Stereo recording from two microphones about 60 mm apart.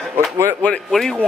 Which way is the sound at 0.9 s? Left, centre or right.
Centre.